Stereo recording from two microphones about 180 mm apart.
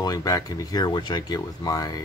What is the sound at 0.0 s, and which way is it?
Speech, 20° left (ahead or behind).